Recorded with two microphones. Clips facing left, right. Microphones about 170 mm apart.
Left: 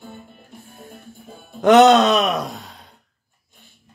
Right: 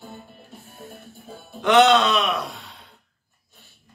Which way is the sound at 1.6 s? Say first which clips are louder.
Left 5 dB; 45° left (ahead or behind).